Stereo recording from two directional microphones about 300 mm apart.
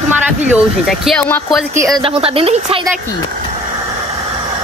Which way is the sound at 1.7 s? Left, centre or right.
Centre.